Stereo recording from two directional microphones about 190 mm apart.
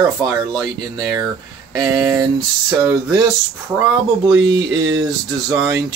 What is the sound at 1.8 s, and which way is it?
Speech, 20° right (ahead or behind).